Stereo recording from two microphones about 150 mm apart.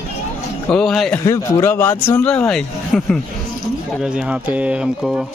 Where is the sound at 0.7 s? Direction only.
5° left (ahead or behind).